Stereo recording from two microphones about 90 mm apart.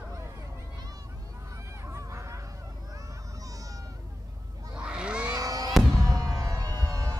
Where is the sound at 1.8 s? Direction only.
35° right (ahead or behind).